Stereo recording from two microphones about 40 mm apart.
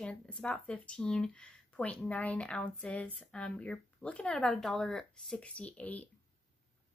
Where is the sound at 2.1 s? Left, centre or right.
Left.